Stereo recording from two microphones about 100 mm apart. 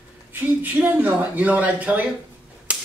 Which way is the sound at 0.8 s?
15° right (ahead or behind).